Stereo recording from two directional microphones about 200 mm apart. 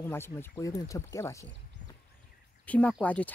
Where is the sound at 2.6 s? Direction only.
5° left (ahead or behind).